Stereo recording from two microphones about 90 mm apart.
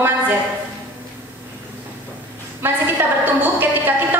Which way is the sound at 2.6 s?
25° right (ahead or behind).